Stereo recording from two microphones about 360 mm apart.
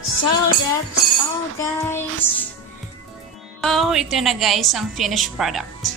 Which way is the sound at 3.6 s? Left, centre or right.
Centre.